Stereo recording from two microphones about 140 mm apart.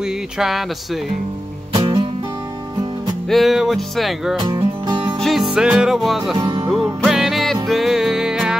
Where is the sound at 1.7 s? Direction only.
35° right (ahead or behind).